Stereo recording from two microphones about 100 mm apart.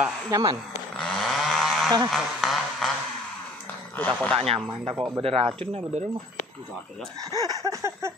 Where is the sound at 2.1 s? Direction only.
Centre (ahead or behind).